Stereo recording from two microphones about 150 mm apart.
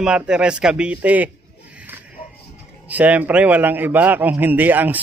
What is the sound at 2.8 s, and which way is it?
A man's voice, 10° right (ahead or behind).